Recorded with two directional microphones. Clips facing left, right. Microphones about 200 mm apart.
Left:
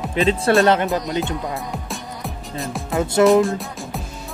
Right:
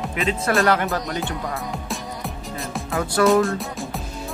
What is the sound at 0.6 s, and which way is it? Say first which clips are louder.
Speech: left 3 dB; 20° left (ahead or behind).